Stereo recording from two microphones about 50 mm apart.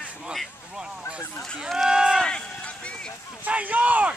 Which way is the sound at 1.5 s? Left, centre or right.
Centre.